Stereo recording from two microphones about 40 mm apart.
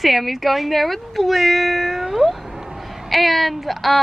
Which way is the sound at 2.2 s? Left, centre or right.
Centre.